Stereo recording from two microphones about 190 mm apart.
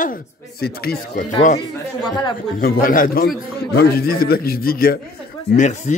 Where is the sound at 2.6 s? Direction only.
50° left (ahead or behind).